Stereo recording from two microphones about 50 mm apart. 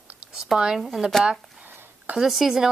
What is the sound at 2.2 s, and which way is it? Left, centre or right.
Speech, centre.